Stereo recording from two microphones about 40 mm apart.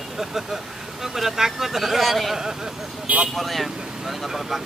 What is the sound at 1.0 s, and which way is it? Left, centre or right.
Speech, centre.